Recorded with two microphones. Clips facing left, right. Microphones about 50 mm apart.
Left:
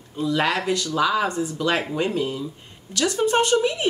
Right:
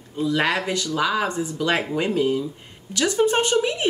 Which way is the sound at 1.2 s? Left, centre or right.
Centre.